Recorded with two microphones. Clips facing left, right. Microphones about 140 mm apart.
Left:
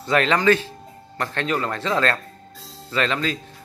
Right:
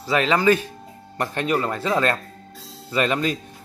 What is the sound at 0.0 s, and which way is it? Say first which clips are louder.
Speech: even; 5° right (ahead or behind).